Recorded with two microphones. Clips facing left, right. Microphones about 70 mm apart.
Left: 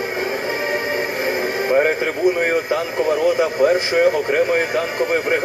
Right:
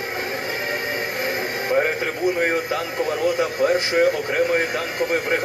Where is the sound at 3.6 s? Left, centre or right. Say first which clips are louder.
Left 2 dB; left.